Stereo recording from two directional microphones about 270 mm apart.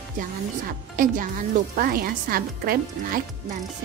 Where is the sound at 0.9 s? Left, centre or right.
Right.